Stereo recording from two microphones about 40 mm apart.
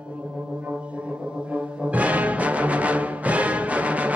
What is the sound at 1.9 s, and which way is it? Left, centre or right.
Music, right.